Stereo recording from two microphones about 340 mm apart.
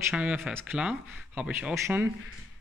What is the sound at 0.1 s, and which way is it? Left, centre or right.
Speech, centre.